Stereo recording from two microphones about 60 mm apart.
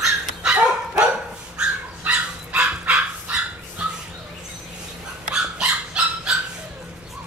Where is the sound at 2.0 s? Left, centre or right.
Centre.